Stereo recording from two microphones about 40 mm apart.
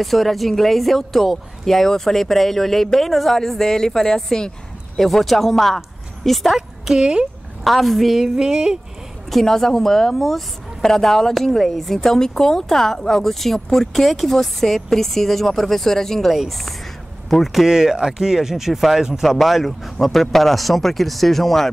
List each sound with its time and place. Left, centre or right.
0.0 s speech: centre
6.9 s speech: right
7.6 s speech: centre
8.4 s speech: centre
9.3 s speech: centre